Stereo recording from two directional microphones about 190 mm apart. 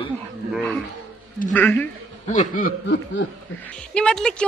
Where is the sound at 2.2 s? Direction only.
40° left (ahead or behind).